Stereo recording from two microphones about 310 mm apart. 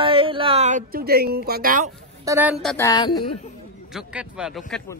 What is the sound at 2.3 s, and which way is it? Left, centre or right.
Speech, centre.